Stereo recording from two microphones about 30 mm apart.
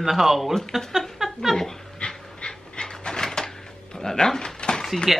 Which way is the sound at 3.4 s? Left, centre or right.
Left.